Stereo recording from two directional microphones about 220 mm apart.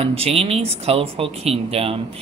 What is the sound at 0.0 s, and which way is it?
Speech, 25° right (ahead or behind).